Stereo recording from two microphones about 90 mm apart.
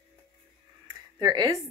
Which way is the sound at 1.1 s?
45° right (ahead or behind).